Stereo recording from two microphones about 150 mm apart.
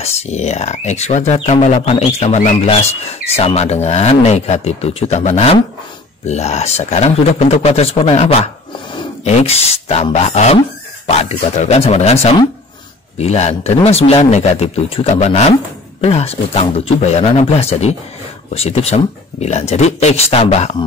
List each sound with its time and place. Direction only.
0.0 s speech: 45° left (ahead or behind)